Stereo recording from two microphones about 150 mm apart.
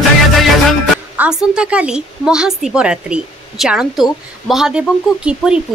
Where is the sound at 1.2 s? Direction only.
5° right (ahead or behind).